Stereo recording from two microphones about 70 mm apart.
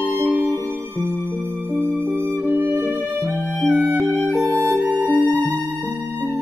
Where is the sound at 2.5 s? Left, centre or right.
Right.